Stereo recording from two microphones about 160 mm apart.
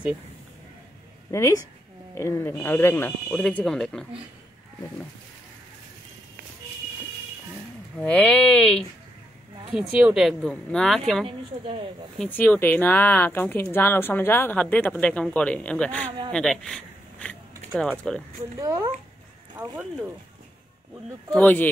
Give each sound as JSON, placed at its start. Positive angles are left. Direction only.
{"t": 1.3, "sound": "speech", "side_deg": 20}
{"t": 3.3, "sound": "speech", "side_deg": 5}
{"t": 8.0, "sound": "speech", "side_deg": 5}
{"t": 9.7, "sound": "speech", "side_deg": -5}
{"t": 11.2, "sound": "speech", "side_deg": -35}
{"t": 12.2, "sound": "speech", "side_deg": 10}
{"t": 18.6, "sound": "speech", "side_deg": -20}
{"t": 21.3, "sound": "speech", "side_deg": 10}